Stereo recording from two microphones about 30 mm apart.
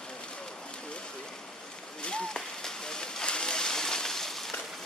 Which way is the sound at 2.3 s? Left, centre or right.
Centre.